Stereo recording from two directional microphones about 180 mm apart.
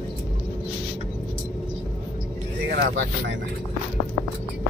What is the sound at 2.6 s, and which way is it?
Speech, 80° right.